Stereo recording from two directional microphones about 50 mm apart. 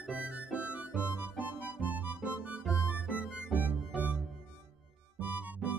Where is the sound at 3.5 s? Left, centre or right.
Right.